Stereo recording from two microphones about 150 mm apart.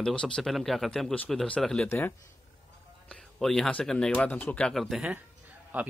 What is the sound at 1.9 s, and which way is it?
Speech, 15° left (ahead or behind).